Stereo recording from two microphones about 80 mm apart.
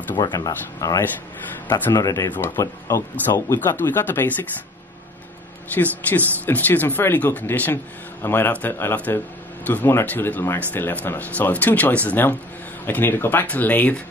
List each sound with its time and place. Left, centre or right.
0.1 s speech: left
0.5 s speech: left
2.3 s speech: left
3.3 s speech: left
5.8 s speech: left